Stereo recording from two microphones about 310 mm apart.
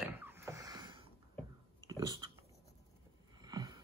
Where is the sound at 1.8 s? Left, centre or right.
Centre.